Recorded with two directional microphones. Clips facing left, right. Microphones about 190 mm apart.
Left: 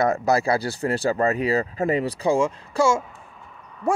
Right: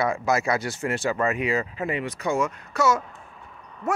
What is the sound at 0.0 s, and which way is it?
Speech, 40° left (ahead or behind).